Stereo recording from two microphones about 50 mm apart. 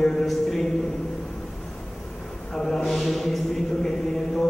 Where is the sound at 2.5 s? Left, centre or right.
Centre.